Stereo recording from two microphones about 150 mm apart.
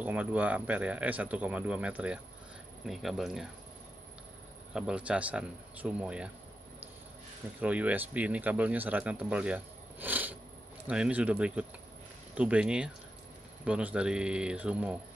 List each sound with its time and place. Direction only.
0.0 s speech: 10° right (ahead or behind)
4.7 s speech: 5° right (ahead or behind)
7.6 s speech: 10° right (ahead or behind)